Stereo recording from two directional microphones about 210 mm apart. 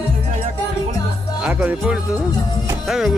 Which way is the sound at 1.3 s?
5° right (ahead or behind).